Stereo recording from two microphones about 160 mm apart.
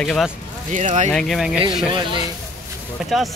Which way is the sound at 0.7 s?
50° right (ahead or behind).